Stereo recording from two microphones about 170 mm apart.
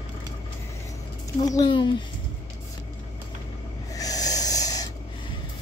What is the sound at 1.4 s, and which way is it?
Speech, 25° left (ahead or behind).